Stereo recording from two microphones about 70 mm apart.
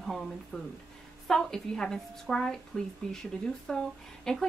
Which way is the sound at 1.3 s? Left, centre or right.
Centre.